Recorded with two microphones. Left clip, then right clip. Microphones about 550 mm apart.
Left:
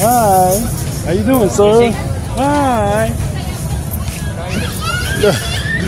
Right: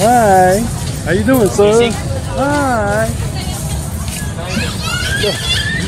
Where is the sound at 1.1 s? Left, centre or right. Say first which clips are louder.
Right 1 dB; left.